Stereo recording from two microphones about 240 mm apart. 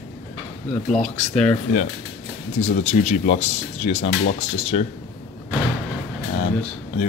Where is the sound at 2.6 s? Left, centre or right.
Left.